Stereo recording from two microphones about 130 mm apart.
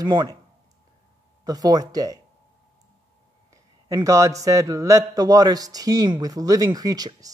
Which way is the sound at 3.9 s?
25° right (ahead or behind).